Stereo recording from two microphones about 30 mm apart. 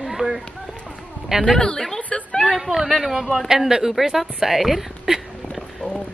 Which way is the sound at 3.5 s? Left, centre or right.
Right.